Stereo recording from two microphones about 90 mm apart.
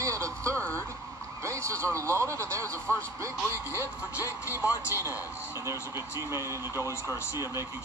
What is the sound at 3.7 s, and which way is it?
A man's voice, 25° right (ahead or behind).